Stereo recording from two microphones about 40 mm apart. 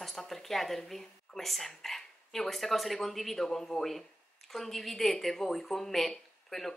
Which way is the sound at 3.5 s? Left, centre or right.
Centre.